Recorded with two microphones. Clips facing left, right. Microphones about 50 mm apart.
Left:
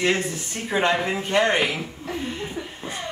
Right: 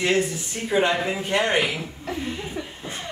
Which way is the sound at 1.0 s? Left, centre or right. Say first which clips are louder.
Left 2 dB; centre.